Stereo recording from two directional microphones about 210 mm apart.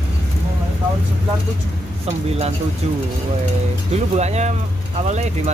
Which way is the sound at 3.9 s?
30° right (ahead or behind).